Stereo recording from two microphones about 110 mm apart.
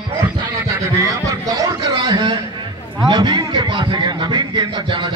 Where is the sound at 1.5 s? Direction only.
35° right (ahead or behind).